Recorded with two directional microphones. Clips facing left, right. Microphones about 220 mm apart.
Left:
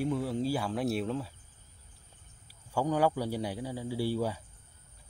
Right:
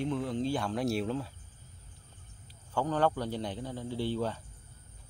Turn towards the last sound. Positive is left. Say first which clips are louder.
# left 1 dB
turn(degrees=10)  # may be behind; listen again after turning